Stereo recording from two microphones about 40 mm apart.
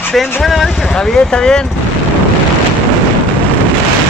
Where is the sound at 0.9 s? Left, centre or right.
Centre.